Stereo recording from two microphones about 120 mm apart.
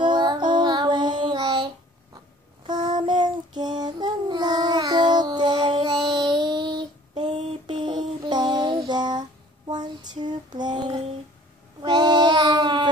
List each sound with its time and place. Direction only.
0.0 s child singing: 40° right (ahead or behind)
10.5 s female singing: 35° right (ahead or behind)
11.8 s child singing: 35° right (ahead or behind)